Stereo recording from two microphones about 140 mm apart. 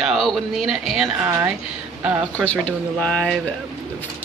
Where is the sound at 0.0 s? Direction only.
Centre (ahead or behind).